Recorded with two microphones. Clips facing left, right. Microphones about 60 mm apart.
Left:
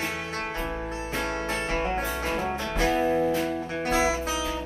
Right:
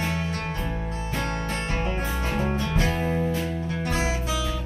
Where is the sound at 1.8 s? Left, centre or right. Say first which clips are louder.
Left 1 dB; left.